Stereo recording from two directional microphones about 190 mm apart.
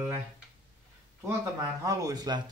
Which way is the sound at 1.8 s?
20° right (ahead or behind).